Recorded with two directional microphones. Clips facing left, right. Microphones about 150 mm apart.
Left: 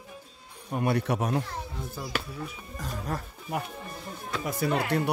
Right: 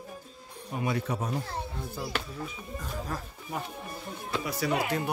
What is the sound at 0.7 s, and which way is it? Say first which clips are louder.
Speech: left 4 dB; 60° left (ahead or behind).